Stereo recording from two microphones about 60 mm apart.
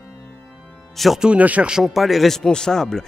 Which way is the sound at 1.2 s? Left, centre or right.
Right.